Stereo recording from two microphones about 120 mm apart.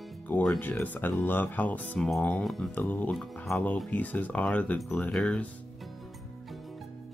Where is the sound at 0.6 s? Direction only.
15° left (ahead or behind); by 2.7 s centre (ahead or behind).